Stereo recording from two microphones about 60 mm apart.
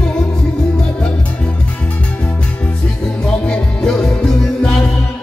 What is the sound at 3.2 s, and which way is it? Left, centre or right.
Music, centre.